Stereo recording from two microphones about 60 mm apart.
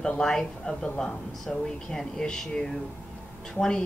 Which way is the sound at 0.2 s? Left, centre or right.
Centre.